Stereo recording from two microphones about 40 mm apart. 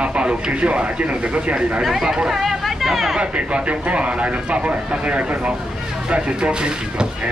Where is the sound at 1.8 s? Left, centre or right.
Centre.